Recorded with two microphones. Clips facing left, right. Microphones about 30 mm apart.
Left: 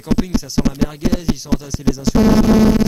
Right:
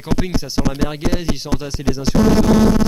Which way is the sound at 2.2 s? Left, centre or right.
Centre.